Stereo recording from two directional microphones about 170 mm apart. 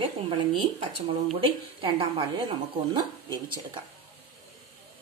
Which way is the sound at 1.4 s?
30° right (ahead or behind).